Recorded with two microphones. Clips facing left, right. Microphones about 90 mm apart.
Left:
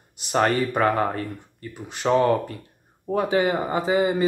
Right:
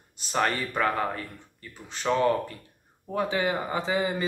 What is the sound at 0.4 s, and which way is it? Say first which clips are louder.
Speech: left 5 dB; 40° left (ahead or behind).